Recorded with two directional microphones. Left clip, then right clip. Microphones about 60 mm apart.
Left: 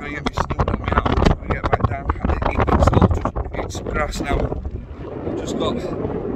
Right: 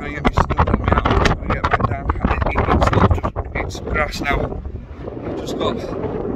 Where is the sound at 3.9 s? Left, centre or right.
Centre.